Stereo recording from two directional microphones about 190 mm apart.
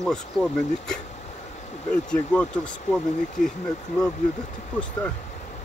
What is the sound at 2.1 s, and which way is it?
Speech, 5° left (ahead or behind).